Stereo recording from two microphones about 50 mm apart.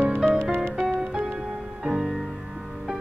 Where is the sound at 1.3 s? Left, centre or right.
Centre.